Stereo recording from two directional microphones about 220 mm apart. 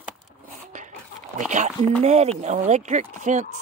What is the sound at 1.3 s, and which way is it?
Speech, 35° right (ahead or behind).